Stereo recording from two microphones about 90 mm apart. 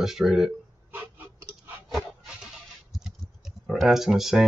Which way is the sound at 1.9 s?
Centre (ahead or behind).